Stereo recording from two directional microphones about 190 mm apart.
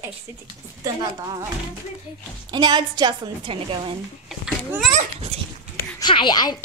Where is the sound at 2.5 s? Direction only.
20° right (ahead or behind).